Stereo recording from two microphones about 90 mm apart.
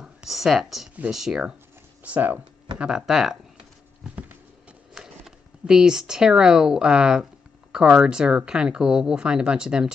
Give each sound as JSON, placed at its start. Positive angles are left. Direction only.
{"t": 0.0, "sound": "speech", "side_deg": -5}
{"t": 2.0, "sound": "speech", "side_deg": -15}
{"t": 4.0, "sound": "horse", "side_deg": -10}
{"t": 4.9, "sound": "speech", "side_deg": -5}